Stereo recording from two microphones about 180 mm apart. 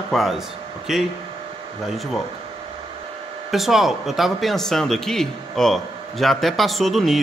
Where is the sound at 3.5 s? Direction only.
Centre (ahead or behind).